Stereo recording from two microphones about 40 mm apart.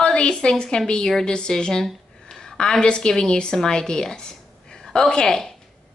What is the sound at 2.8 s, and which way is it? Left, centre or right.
A woman's voice, left.